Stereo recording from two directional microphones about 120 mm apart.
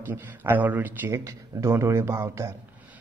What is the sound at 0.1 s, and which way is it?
A man's voice, 15° right (ahead or behind).